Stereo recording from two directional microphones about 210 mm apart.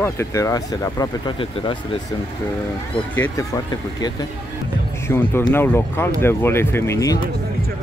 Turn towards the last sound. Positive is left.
turn(degrees=15)  # may be behind; listen again after turning